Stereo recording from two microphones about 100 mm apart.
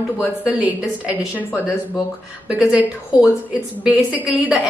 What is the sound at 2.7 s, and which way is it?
A woman's voice, 10° right (ahead or behind).